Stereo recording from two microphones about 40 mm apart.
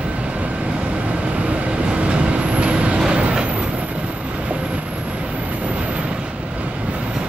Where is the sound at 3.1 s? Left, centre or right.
Right.